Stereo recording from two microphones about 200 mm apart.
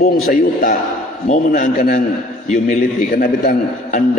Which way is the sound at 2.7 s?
35° left (ahead or behind).